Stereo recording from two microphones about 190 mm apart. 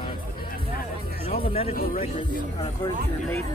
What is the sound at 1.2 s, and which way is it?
Music, 30° left (ahead or behind).